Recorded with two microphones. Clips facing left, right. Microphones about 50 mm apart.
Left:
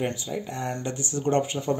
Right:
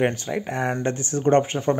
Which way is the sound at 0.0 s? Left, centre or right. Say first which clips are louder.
Right 6 dB; right.